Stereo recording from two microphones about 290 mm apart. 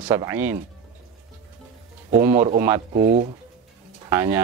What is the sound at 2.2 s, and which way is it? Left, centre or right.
Speech, centre.